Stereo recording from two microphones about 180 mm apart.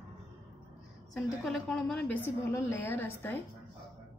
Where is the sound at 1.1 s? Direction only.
Centre (ahead or behind).